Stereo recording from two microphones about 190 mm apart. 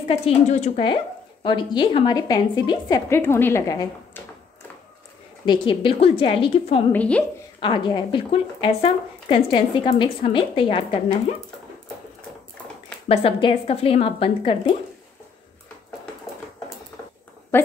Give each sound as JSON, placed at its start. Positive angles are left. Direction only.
{"t": 0.1, "sound": "speech", "side_deg": 35}
{"t": 5.4, "sound": "speech", "side_deg": 25}
{"t": 6.9, "sound": "a woman's voice", "side_deg": 5}
{"t": 7.6, "sound": "speech", "side_deg": 25}
{"t": 13.1, "sound": "speech", "side_deg": 30}
{"t": 17.5, "sound": "a woman's voice", "side_deg": 10}